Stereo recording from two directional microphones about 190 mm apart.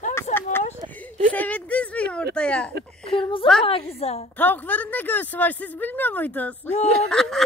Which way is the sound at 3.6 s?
30° left (ahead or behind).